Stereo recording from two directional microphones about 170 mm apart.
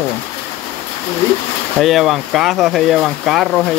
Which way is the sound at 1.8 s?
Centre (ahead or behind).